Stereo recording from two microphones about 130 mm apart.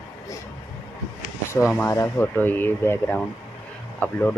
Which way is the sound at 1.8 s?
20° left (ahead or behind).